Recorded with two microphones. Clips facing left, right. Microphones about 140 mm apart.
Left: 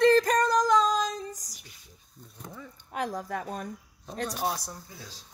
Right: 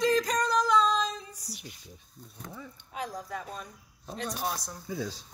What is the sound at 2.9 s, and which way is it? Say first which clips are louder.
Speech: left 5 dB; 55° left (ahead or behind).